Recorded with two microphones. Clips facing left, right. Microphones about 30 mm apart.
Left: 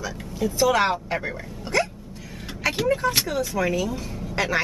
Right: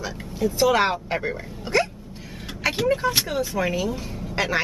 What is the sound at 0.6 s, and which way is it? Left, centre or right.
Speech, centre.